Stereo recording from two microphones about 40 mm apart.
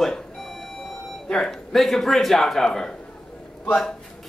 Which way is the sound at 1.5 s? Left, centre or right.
Centre.